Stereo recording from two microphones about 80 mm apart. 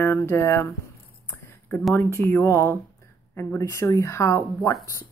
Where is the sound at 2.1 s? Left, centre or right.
Left.